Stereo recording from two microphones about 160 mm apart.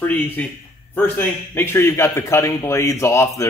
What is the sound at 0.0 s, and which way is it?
A man's voice, 10° left (ahead or behind).